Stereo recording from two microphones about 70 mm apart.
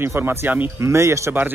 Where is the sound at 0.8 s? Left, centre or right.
Right.